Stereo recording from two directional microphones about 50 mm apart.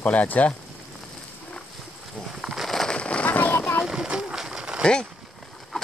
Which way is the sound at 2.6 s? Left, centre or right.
Centre.